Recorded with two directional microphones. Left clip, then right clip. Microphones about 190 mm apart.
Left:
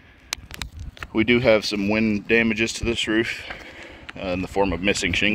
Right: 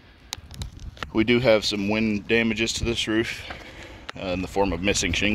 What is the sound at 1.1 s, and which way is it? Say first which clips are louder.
Speech: left 2 dB; 15° left (ahead or behind).